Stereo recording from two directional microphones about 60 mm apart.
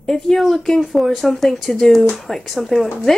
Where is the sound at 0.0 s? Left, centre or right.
Centre.